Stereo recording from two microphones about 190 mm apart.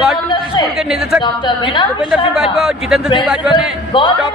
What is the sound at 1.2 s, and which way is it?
Speech, 25° left (ahead or behind).